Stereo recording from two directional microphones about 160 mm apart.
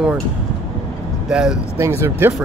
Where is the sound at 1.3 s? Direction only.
5° right (ahead or behind).